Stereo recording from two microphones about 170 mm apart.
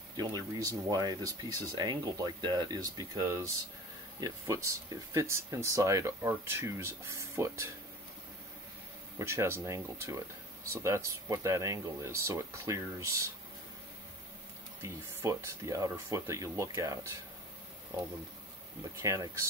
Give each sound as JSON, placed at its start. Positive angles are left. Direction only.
{"t": 0.2, "sound": "speech", "side_deg": -20}
{"t": 9.2, "sound": "speech", "side_deg": -15}
{"t": 14.8, "sound": "speech", "side_deg": -20}
{"t": 18.9, "sound": "speech", "side_deg": -20}